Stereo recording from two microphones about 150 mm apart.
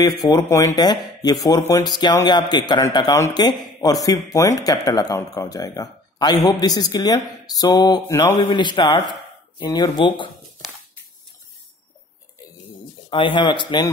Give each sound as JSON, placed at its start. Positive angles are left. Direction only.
{"t": 0.0, "sound": "speech", "side_deg": 25}
{"t": 13.1, "sound": "speech", "side_deg": 35}